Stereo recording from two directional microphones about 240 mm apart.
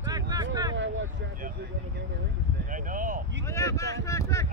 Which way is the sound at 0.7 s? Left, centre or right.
Right.